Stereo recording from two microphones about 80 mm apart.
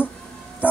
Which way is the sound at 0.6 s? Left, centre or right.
Left.